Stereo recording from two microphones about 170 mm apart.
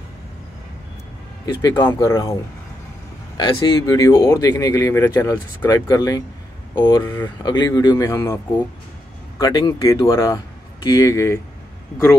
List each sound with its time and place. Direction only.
1.4 s speech: 20° left (ahead or behind)
3.3 s speech: 25° left (ahead or behind)
9.4 s speech: 25° left (ahead or behind)